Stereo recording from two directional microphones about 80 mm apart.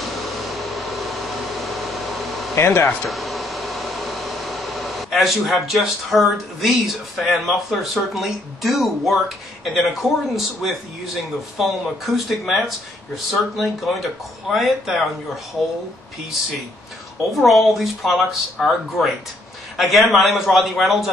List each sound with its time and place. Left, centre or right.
0.0 s a sound: centre
2.5 s speech: left
2.9 s speech: centre
17.4 s speech: centre